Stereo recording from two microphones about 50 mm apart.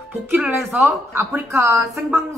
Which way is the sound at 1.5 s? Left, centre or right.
Right.